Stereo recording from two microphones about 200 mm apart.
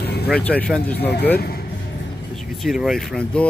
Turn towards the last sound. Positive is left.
turn(degrees=5)  # may be behind; listen again after turning